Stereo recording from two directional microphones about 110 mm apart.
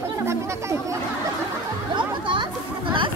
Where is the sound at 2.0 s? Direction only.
45° right (ahead or behind).